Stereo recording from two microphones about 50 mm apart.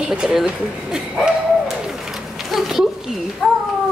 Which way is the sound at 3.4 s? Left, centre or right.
Centre.